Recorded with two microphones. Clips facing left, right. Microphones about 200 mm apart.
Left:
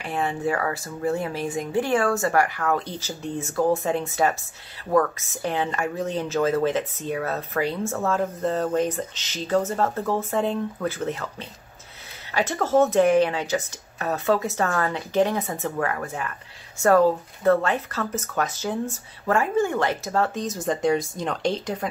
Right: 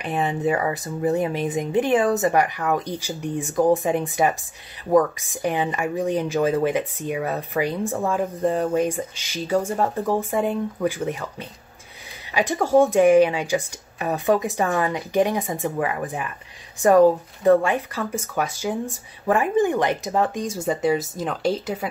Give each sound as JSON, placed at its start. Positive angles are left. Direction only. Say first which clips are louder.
{"t": 0.0, "sound": "speech", "louder": "right 3 dB", "side_deg": -20}